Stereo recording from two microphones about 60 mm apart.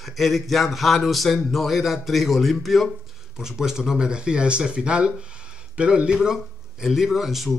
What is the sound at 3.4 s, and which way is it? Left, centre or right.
Speech, centre.